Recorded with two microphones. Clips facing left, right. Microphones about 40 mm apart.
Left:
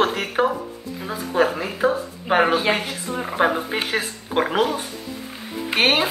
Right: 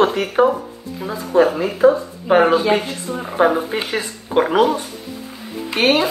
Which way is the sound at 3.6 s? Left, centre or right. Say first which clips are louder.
Right 1 dB; centre.